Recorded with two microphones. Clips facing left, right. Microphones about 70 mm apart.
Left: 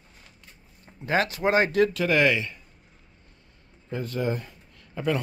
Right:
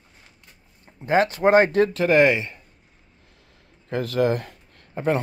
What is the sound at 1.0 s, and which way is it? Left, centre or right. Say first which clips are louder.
Speech: right 5 dB; right.